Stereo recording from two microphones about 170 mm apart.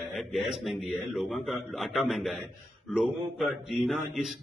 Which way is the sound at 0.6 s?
Centre (ahead or behind).